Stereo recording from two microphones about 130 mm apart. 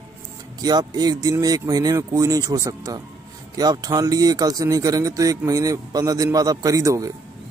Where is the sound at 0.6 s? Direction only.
30° right (ahead or behind).